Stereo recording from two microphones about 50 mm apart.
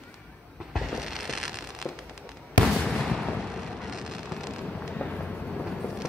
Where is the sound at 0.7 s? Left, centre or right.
Centre.